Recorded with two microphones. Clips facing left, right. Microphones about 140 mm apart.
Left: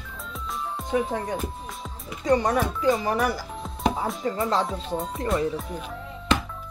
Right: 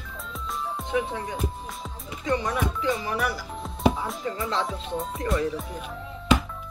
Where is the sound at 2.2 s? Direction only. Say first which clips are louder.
Left 5 dB; 40° left (ahead or behind).